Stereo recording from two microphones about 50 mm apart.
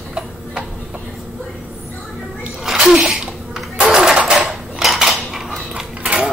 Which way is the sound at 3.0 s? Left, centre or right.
Centre.